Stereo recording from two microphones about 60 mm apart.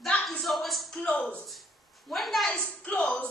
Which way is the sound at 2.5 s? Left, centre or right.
Centre.